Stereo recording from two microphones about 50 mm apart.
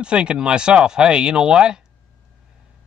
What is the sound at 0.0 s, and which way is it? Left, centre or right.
Speech, centre.